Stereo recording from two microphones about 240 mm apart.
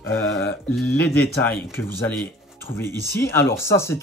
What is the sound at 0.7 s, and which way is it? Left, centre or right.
Speech, centre.